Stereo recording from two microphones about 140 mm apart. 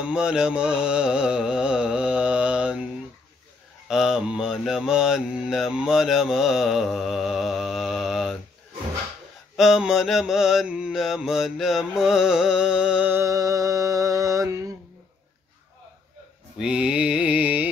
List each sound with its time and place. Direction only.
0.0 s music: 5° right (ahead or behind)
3.9 s mantra: 5° right (ahead or behind)
9.6 s mantra: 5° right (ahead or behind)
13.2 s mantra: 25° right (ahead or behind)
16.5 s music: 5° right (ahead or behind)